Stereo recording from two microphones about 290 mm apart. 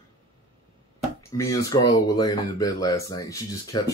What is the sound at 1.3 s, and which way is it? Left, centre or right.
Speech, centre.